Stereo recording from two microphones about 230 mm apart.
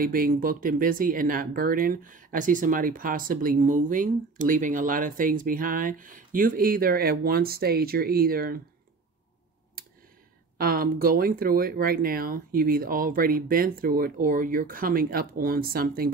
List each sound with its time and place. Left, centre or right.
0.0 s speech: right
10.6 s speech: right